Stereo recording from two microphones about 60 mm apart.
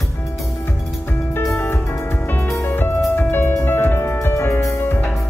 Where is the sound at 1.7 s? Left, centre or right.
Left.